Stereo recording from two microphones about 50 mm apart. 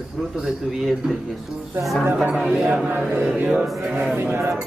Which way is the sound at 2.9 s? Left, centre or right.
Right.